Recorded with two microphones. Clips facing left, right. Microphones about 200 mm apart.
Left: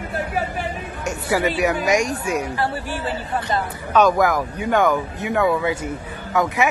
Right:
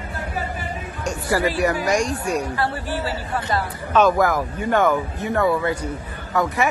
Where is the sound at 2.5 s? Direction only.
15° left (ahead or behind).